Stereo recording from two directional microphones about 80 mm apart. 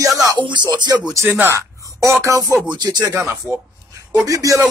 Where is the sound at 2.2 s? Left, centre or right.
Right.